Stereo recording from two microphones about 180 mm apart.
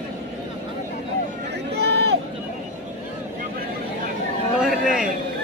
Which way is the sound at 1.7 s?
65° right (ahead or behind).